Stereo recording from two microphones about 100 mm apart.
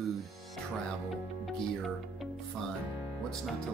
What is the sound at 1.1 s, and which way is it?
Speech, centre (ahead or behind).